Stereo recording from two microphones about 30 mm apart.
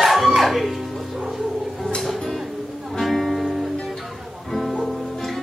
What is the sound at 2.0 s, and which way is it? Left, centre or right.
Music, centre.